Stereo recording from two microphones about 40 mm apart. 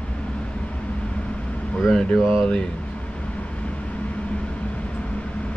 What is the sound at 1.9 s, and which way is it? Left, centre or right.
Speech, centre.